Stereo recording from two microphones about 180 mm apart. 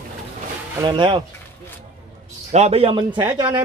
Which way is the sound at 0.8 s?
25° right (ahead or behind).